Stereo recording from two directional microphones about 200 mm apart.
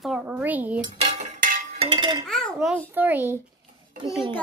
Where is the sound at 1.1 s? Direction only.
40° right (ahead or behind); by 2.2 s 25° right (ahead or behind).